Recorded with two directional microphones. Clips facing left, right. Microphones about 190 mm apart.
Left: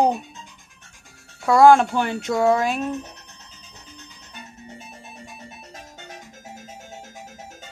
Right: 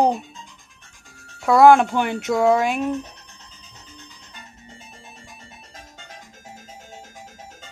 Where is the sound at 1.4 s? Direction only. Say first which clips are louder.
Right 1 dB; 5° right (ahead or behind).